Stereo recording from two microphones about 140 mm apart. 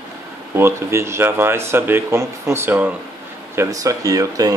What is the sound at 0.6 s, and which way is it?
Speech, 20° right (ahead or behind).